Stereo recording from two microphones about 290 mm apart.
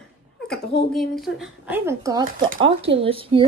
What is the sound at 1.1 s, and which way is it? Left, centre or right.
Speech, centre.